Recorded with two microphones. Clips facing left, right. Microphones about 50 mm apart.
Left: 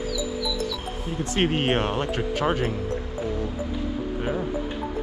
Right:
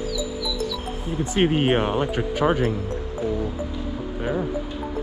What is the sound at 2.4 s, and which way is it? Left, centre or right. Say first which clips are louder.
Speech: right 4 dB; right.